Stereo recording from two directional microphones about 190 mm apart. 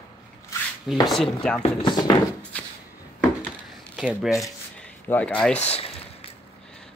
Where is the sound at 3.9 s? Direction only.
5° right (ahead or behind).